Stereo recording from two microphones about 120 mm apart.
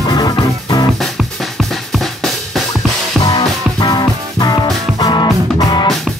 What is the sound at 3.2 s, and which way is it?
Music, 30° left (ahead or behind).